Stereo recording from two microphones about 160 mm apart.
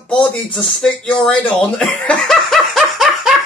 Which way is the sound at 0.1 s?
5° left (ahead or behind).